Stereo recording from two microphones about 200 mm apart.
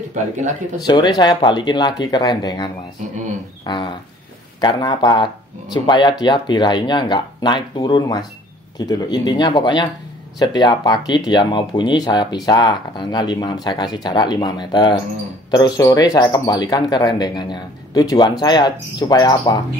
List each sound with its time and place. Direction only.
0.2 s speech: 40° right (ahead or behind)
0.8 s speech: 20° left (ahead or behind)